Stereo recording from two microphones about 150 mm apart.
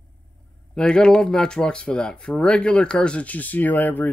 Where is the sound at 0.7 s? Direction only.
5° left (ahead or behind).